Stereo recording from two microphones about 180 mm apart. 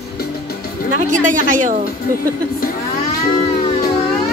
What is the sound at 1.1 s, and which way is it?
Speech, 45° right (ahead or behind).